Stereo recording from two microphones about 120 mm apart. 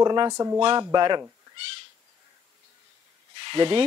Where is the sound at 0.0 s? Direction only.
35° right (ahead or behind).